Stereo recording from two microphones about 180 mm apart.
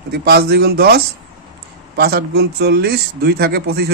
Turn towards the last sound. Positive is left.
turn(degrees=-60)  # may be behind; listen again after turning